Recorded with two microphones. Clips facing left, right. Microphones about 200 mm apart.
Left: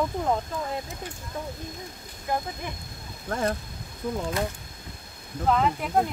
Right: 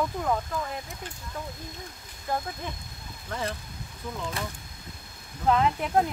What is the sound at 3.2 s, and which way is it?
Speech, 50° left (ahead or behind).